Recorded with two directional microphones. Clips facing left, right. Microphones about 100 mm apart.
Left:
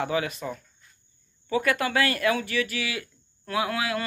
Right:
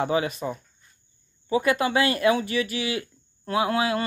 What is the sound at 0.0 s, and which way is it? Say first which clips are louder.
Speech: right 3 dB; 25° right (ahead or behind).